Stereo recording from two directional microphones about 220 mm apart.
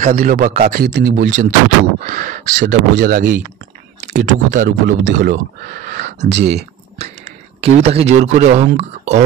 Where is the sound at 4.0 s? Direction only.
30° right (ahead or behind).